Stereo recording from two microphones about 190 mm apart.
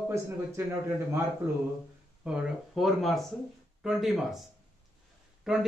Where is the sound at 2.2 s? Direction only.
Centre (ahead or behind).